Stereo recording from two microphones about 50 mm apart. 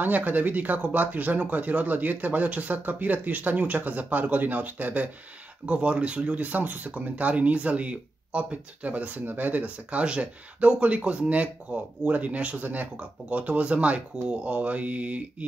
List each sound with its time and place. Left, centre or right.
0.0 s speech: right
9.2 s speech: right